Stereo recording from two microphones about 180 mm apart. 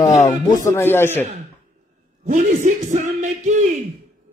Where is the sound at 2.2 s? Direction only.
45° right (ahead or behind).